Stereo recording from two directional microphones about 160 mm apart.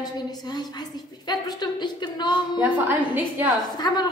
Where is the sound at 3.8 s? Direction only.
25° left (ahead or behind).